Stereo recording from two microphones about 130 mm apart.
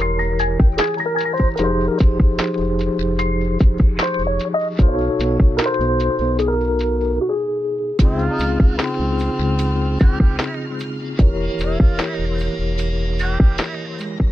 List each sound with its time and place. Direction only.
0.0 s music: centre (ahead or behind)
1.7 s music: 30° left (ahead or behind)
2.0 s music: centre (ahead or behind)
5.1 s music: centre (ahead or behind)
8.0 s music: centre (ahead or behind)
11.7 s music: centre (ahead or behind)